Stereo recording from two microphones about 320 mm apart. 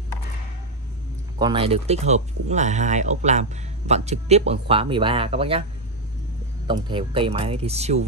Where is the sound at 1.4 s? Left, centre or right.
Centre.